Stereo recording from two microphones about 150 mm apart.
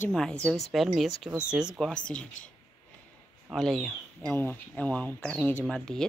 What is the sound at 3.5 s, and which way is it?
Speech, 5° left (ahead or behind).